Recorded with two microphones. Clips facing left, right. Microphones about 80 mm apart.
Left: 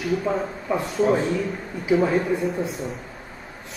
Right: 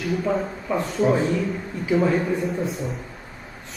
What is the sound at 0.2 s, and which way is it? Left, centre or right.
A man's voice, centre.